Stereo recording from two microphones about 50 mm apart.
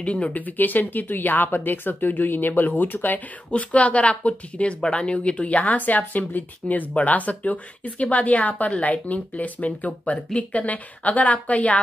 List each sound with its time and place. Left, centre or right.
0.0 s speech: left
3.4 s speech: left